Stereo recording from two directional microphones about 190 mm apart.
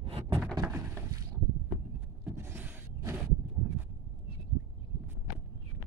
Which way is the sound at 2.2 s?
15° right (ahead or behind).